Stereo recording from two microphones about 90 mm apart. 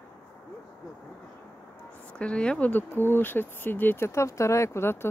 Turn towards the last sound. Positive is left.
turn(degrees=25)  # may be behind; listen again after turning